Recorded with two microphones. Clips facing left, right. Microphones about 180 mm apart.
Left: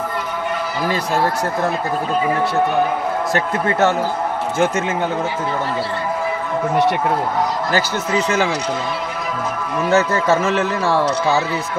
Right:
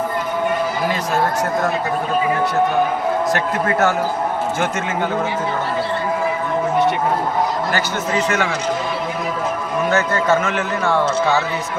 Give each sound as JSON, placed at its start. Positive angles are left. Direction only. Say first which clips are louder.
{"t": 3.3, "sound": "speech", "louder": "left 1 dB", "side_deg": 25}
{"t": 9.8, "sound": "speech", "louder": "left 2 dB", "side_deg": 25}